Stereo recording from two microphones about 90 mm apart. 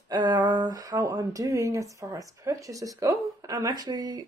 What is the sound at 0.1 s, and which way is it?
Speech, 50° right (ahead or behind).